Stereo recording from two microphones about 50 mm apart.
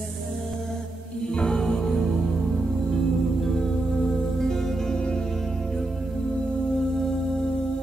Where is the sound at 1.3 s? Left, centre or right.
Centre.